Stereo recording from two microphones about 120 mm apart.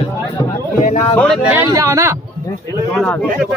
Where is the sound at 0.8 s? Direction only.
90° left.